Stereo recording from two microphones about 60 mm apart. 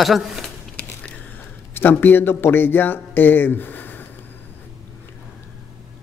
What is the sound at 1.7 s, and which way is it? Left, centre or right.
Speech, left.